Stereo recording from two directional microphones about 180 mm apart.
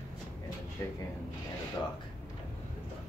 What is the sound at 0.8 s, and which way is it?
Speech, 15° left (ahead or behind).